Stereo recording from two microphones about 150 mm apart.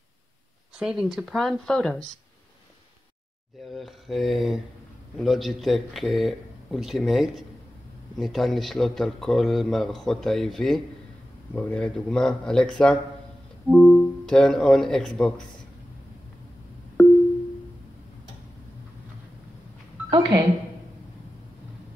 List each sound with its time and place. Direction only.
0.7 s speech: 5° right (ahead or behind)
3.7 s speech: centre (ahead or behind)
20.1 s a sound: 25° right (ahead or behind)